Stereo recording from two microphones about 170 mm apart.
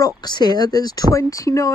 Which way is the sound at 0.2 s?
25° left (ahead or behind).